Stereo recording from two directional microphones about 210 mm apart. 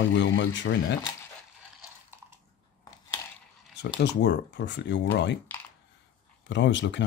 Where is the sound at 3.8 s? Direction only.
55° left (ahead or behind).